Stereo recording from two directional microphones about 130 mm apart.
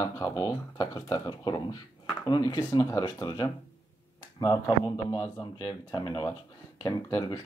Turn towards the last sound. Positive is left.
turn(degrees=30)  # may be behind; listen again after turning